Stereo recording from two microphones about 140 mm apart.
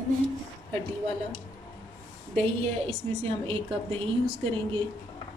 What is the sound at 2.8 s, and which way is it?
A woman's voice, 40° right (ahead or behind).